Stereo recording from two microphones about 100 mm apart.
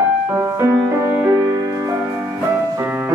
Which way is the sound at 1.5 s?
35° right (ahead or behind).